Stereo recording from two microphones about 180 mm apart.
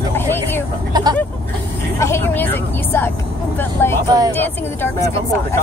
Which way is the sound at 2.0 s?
15° left (ahead or behind).